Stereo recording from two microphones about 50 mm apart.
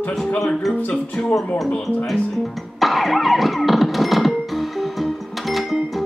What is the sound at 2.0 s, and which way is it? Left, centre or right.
Music, centre.